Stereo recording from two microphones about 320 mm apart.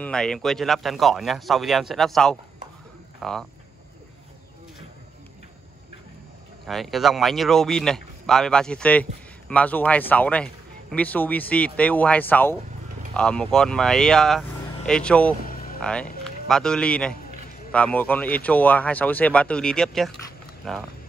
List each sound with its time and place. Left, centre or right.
0.0 s speech: centre
6.6 s speech: centre
15.4 s music: left
15.8 s speech: centre